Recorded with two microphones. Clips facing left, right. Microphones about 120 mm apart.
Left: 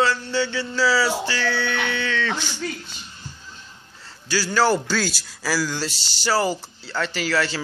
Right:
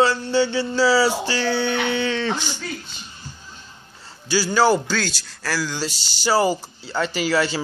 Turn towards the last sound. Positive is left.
turn(degrees=-15)  # may be behind; listen again after turning